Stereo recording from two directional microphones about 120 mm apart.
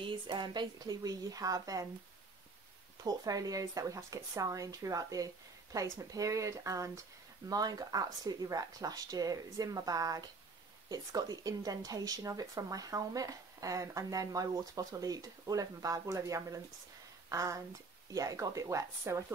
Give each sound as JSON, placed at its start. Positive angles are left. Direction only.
{"t": 0.0, "sound": "speech", "side_deg": -40}
{"t": 3.0, "sound": "speech", "side_deg": -30}